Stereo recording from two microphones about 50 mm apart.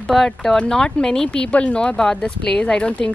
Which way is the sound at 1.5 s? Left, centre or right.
Left.